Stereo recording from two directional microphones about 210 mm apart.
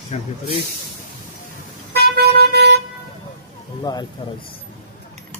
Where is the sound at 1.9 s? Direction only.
50° right (ahead or behind).